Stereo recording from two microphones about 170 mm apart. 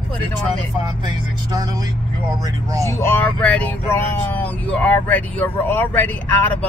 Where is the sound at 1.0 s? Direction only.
20° right (ahead or behind).